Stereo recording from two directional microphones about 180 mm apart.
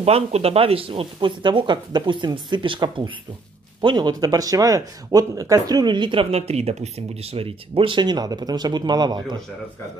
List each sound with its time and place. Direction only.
0.0 s speech: 35° right (ahead or behind)